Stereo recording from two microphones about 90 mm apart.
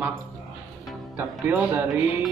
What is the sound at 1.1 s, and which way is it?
Speech, 25° right (ahead or behind).